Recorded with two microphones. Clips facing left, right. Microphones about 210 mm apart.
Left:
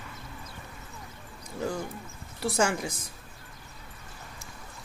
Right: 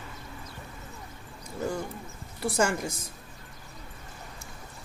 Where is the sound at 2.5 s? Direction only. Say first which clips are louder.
Even; 5° left (ahead or behind).